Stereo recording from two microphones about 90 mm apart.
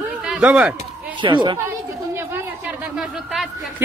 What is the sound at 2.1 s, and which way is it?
Chatter, 25° right (ahead or behind).